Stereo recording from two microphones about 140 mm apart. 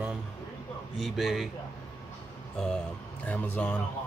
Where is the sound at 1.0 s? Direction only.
Centre (ahead or behind).